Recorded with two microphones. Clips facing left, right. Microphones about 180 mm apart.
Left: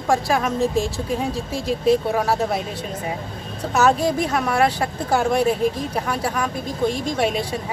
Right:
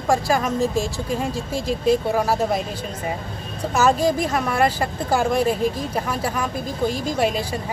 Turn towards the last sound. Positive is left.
turn(degrees=0)  # may be behind; listen again after turning